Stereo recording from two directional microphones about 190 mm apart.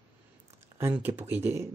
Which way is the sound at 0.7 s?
10° right (ahead or behind).